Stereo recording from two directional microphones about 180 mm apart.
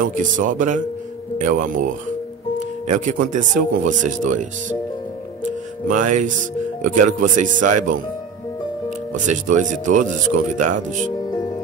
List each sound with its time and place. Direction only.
0.0 s speech: 45° right (ahead or behind)
5.9 s speech: 45° right (ahead or behind)
9.1 s speech: 45° right (ahead or behind)